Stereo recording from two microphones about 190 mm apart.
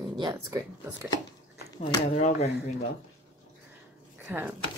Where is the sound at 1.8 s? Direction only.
40° left (ahead or behind).